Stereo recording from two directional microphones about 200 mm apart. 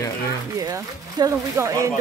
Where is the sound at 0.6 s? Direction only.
20° right (ahead or behind).